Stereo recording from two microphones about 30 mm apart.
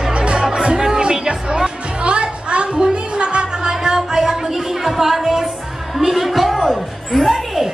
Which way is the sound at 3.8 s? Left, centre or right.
Centre.